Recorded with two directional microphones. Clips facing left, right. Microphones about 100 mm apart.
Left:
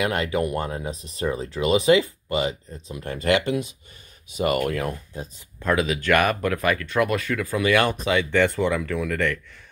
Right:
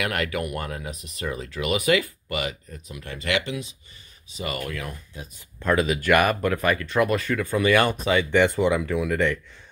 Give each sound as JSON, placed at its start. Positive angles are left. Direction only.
{"t": 0.0, "sound": "speech", "side_deg": 25}
{"t": 5.6, "sound": "speech", "side_deg": 0}
{"t": 8.3, "sound": "speech", "side_deg": -15}